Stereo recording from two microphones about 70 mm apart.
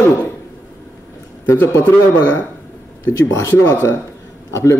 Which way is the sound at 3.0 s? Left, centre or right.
Left.